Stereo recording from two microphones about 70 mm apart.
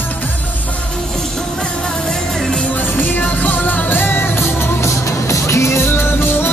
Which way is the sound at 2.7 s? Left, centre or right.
Left.